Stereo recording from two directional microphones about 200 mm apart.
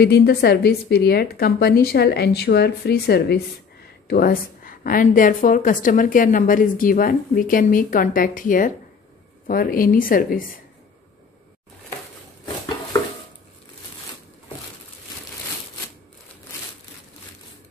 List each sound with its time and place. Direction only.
0.0 s a woman's voice: 50° left (ahead or behind)